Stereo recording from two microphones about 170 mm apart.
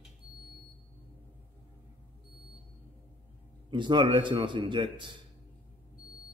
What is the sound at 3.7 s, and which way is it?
A man's voice, 30° right (ahead or behind).